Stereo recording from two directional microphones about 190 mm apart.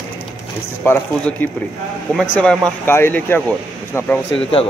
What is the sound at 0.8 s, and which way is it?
Speech, 10° left (ahead or behind).